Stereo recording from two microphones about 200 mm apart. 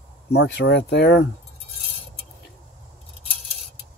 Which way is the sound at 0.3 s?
60° left (ahead or behind).